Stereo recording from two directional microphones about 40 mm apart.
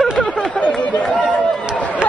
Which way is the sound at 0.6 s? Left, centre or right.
Centre.